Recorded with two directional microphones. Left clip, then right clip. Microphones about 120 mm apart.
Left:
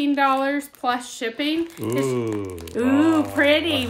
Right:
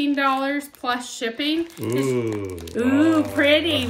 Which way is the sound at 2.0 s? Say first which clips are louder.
Even; 20° left (ahead or behind).